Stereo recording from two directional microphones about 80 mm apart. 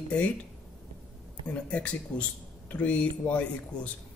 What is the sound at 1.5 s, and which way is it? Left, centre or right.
Speech, centre.